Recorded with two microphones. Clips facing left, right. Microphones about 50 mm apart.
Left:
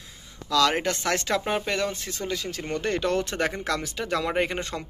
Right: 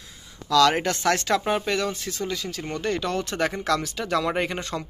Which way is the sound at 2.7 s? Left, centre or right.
Left.